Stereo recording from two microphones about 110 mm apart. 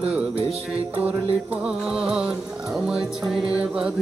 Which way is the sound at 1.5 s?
10° right (ahead or behind).